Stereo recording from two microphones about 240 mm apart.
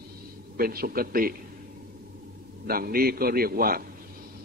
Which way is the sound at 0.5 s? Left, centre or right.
Right.